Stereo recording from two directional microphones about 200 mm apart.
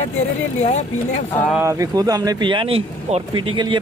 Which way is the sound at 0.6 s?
35° left (ahead or behind).